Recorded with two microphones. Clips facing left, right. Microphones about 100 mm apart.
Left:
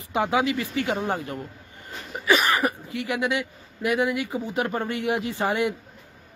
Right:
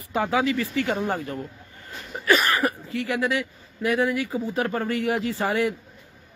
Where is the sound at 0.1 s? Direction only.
20° left (ahead or behind).